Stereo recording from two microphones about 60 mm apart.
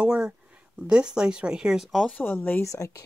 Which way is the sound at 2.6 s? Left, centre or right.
Left.